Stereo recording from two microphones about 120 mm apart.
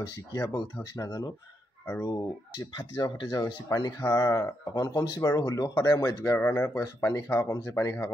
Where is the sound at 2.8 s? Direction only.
40° left (ahead or behind).